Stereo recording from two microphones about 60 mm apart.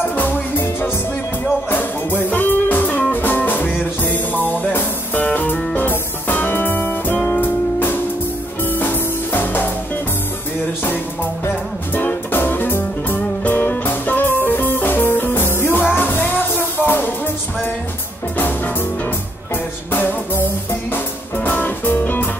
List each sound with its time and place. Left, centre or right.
0.1 s music: left
11.4 s music: left
19.5 s music: left